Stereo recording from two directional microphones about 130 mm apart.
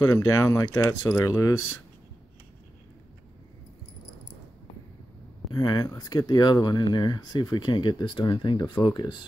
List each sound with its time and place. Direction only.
0.0 s speech: 25° left (ahead or behind)
5.5 s speech: 30° left (ahead or behind)